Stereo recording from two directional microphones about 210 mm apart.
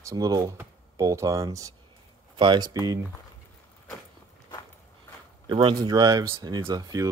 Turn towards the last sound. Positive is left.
turn(degrees=-15)  # may be behind; listen again after turning